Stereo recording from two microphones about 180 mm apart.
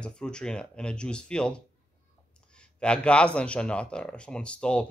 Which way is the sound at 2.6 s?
5° left (ahead or behind).